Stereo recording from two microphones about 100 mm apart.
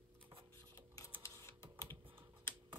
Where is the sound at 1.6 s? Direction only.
60° right (ahead or behind).